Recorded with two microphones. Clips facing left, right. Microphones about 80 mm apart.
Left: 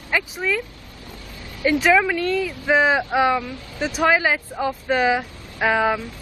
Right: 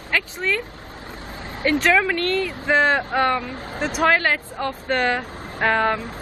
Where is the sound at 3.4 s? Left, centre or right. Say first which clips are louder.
Right 1 dB; right.